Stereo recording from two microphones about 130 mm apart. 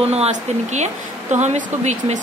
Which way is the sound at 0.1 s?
60° right (ahead or behind).